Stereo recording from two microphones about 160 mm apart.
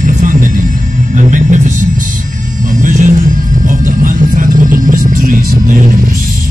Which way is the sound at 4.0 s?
55° right (ahead or behind).